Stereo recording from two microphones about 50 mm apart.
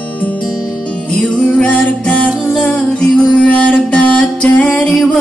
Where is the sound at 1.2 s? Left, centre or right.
Centre.